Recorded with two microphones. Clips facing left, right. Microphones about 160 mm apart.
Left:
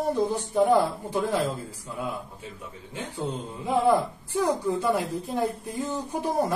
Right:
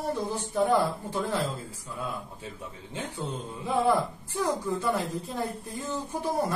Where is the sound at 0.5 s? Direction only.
15° left (ahead or behind).